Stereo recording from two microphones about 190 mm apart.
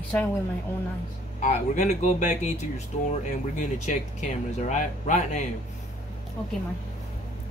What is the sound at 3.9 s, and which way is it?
Speech, 40° left (ahead or behind).